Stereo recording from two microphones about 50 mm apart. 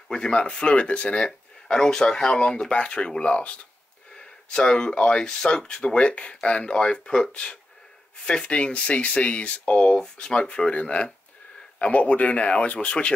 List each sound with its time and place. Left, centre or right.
0.1 s speech: centre